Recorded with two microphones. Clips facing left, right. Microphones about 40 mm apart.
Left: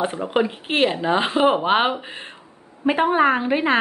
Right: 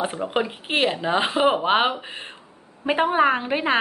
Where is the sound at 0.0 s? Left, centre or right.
Centre.